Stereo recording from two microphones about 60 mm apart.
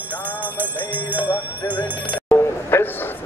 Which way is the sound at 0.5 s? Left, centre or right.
Right.